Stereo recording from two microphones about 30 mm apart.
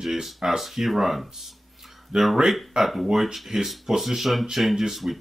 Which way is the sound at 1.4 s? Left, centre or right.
Centre.